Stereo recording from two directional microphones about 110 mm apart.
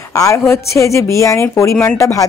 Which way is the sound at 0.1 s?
30° left (ahead or behind).